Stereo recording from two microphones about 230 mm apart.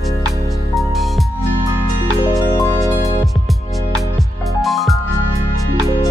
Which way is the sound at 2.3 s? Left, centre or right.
Centre.